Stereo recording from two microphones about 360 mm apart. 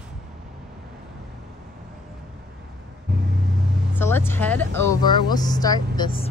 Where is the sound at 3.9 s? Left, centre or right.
Centre.